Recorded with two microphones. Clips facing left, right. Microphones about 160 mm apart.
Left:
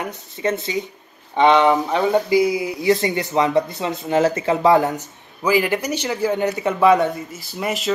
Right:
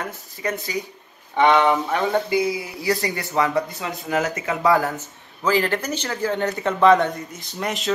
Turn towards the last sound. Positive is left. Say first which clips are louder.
# left 2 dB
turn(degrees=5)  # may be behind; listen again after turning